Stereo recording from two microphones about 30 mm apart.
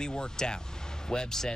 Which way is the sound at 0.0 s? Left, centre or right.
Left.